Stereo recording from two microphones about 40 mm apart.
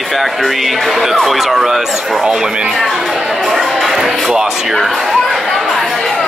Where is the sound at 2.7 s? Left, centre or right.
Centre.